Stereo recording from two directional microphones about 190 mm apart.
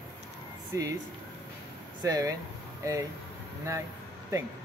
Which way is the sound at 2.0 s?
20° right (ahead or behind).